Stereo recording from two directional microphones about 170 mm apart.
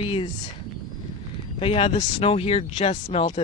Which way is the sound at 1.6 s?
30° left (ahead or behind).